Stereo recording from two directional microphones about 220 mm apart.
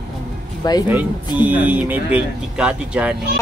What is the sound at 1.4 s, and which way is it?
Speech, 10° right (ahead or behind).